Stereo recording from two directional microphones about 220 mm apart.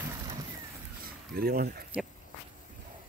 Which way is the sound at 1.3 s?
45° right (ahead or behind).